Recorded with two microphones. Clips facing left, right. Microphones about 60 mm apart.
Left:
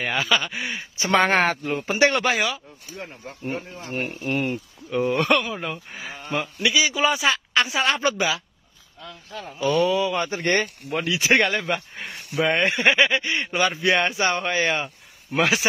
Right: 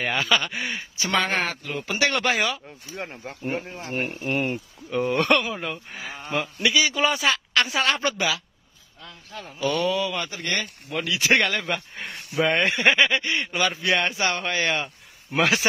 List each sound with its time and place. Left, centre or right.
0.0 s speech: centre
0.9 s speech: left
1.2 s speech: left
1.9 s a man's voice: left
2.1 s speech: centre
3.0 s speech: right
4.0 s speech: centre
9.4 s a man's voice: centre; by 10.7 s left
10.9 s a man's voice: centre
11.6 s speech: centre
13.4 s a man's voice: left
15.3 s speech: centre